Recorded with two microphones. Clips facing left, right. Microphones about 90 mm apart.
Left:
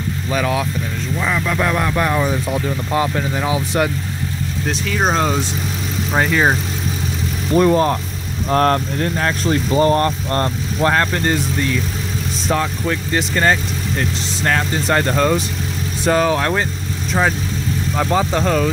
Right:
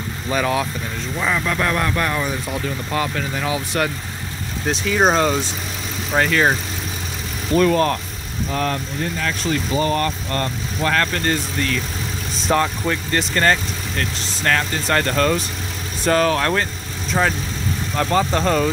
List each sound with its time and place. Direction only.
0.3 s speech: centre (ahead or behind); by 3.9 s 20° left (ahead or behind)
4.6 s speech: 5° right (ahead or behind); by 6.5 s 10° left (ahead or behind)
7.5 s speech: 20° left (ahead or behind)
8.5 s speech: 50° left (ahead or behind); by 11.0 s 30° left (ahead or behind)
11.0 s speech: 15° left (ahead or behind)
12.4 s speech: centre (ahead or behind)
17.9 s speech: 10° left (ahead or behind)